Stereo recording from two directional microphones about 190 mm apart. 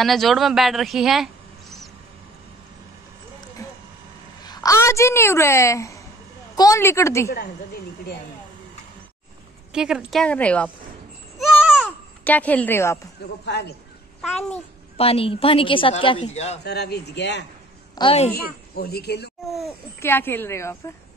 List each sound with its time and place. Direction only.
0.0 s speech: centre (ahead or behind)
4.5 s a woman's voice: 20° left (ahead or behind)
9.7 s a woman's voice: 5° right (ahead or behind)
11.3 s babbling: 5° right (ahead or behind)
12.3 s a woman's voice: 10° left (ahead or behind)
13.5 s a child's voice: 60° left (ahead or behind)
15.0 s a woman's voice: 30° left (ahead or behind)
16.6 s a child's voice: 60° left (ahead or behind)
17.9 s a woman's voice: 30° left (ahead or behind)
18.3 s a child's voice: 55° left (ahead or behind)
20.0 s a woman's voice: 10° left (ahead or behind)